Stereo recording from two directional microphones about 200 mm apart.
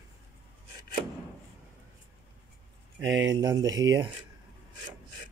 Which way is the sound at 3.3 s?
15° right (ahead or behind).